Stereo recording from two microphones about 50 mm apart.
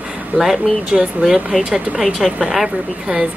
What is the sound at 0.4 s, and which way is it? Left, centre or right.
Speech, centre.